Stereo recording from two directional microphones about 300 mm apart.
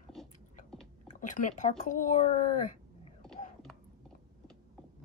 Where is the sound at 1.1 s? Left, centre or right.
Left.